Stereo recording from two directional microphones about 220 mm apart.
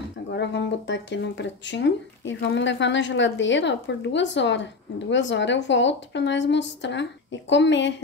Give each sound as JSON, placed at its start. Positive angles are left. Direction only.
{"t": 0.3, "sound": "speech", "side_deg": 50}